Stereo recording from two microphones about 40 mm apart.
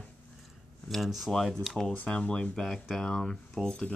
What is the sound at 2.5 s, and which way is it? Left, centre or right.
Speech, centre.